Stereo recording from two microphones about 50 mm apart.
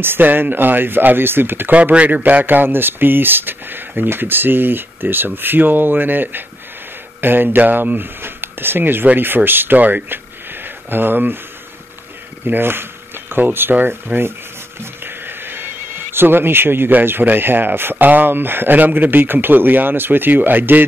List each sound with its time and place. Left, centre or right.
0.0 s speech: right
1.7 s speech: right
12.4 s speech: right